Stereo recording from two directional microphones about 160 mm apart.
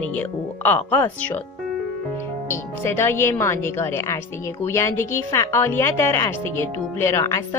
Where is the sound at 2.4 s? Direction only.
15° left (ahead or behind).